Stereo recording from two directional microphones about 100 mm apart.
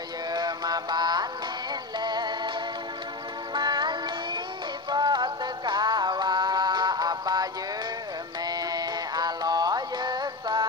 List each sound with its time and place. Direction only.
0.3 s music: 40° right (ahead or behind)
3.5 s music: 50° right (ahead or behind)
8.5 s music: 40° right (ahead or behind)